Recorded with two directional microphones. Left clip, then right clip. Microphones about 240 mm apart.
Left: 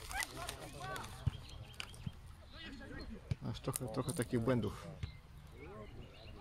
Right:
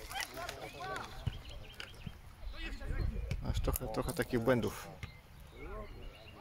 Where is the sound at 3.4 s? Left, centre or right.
Centre.